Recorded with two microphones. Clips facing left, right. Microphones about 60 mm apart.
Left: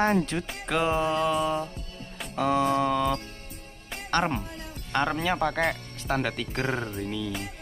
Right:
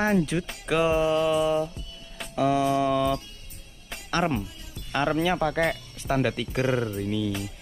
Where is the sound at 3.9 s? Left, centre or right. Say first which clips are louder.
Even; centre.